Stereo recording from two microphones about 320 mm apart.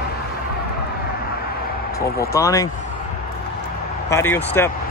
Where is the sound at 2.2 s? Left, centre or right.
Centre.